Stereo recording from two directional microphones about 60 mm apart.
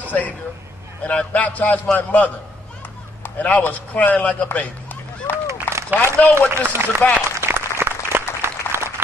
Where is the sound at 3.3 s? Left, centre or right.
Left.